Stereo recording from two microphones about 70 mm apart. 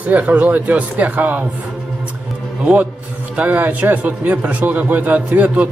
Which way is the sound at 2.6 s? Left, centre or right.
Right.